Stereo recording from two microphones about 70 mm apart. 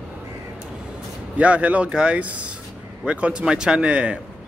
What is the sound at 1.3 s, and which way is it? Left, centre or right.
Speech, centre.